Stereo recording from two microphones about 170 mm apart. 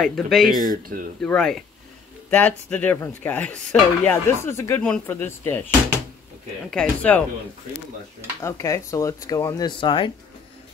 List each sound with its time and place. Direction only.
0.0 s speech: centre (ahead or behind)
0.7 s speech: 55° right (ahead or behind)
1.2 s speech: 5° left (ahead or behind)
6.7 s speech: 5° left (ahead or behind)
8.4 s speech: 15° left (ahead or behind)